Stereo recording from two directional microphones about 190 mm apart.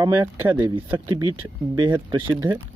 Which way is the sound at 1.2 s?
20° right (ahead or behind).